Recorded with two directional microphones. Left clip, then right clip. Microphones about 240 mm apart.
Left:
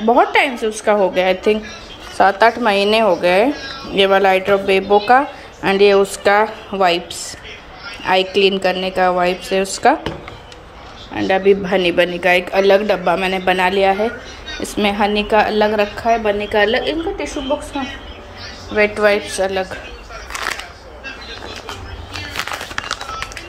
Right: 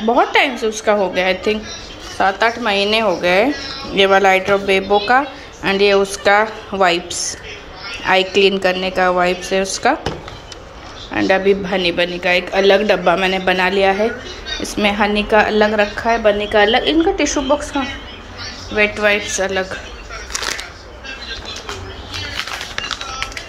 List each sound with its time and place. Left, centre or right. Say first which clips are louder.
0.0 s speech: left 1 dB; centre
11.1 s speech: even; centre
18.8 s speech: left 1 dB; centre
22.8 s music: right 1 dB; left